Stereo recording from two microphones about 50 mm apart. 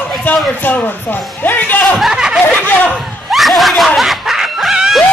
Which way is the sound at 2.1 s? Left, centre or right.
Centre.